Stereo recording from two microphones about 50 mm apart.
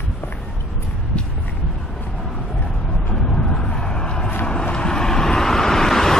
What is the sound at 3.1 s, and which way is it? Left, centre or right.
Vehicle, centre.